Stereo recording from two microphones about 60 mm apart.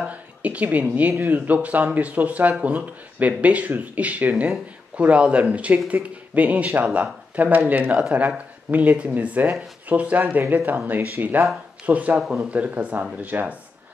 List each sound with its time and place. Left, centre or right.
0.0 s speech: right